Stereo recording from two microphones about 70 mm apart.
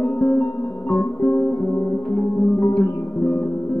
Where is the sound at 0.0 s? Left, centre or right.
Left.